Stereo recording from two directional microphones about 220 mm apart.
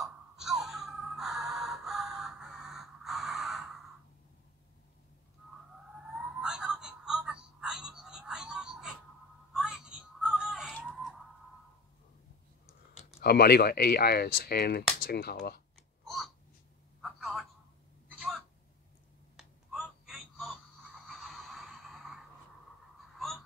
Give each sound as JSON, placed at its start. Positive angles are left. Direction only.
{"t": 0.0, "sound": "wail", "side_deg": 0}
{"t": 6.4, "sound": "music", "side_deg": -5}
{"t": 13.2, "sound": "speech", "side_deg": 45}
{"t": 17.0, "sound": "telephone", "side_deg": 0}
{"t": 19.3, "sound": "a sound", "side_deg": 0}